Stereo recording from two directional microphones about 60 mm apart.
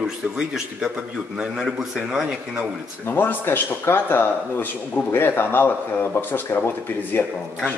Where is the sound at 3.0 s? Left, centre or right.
Left.